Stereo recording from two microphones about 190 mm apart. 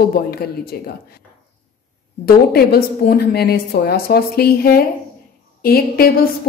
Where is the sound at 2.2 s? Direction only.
55° left (ahead or behind).